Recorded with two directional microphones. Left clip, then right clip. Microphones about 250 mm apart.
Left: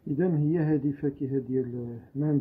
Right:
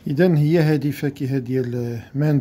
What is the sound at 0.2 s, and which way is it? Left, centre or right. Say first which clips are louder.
Speech: right 10 dB; right.